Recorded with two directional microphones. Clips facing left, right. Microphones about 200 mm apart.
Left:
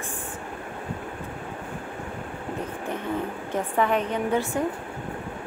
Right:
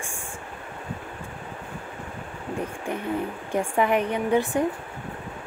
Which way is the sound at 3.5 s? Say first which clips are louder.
Right 2 dB; 10° right (ahead or behind).